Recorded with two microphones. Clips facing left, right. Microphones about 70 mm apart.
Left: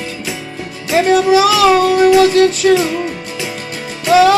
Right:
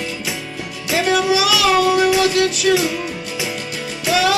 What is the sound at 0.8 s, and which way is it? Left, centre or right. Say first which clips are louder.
Music: left 6 dB; left.